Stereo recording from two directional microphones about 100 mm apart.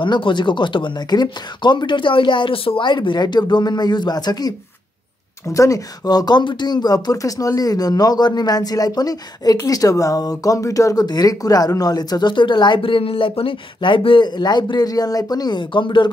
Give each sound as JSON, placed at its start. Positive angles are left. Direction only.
{"t": 0.0, "sound": "speech", "side_deg": 55}